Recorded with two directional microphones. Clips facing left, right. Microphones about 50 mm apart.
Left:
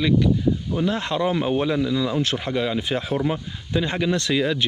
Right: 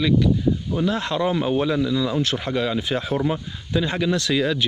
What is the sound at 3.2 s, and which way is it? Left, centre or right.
Speech, left.